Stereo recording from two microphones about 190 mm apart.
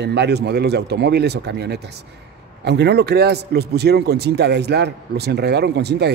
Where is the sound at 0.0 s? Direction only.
60° right (ahead or behind).